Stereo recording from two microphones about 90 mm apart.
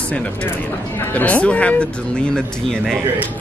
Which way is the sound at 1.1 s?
15° left (ahead or behind).